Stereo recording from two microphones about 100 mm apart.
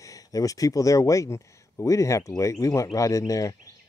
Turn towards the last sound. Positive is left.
turn(degrees=35)  # may be behind; listen again after turning